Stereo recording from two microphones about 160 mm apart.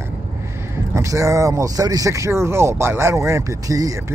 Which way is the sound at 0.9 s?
20° right (ahead or behind).